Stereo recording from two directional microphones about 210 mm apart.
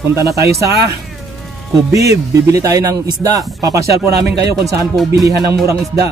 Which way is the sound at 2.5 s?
15° right (ahead or behind).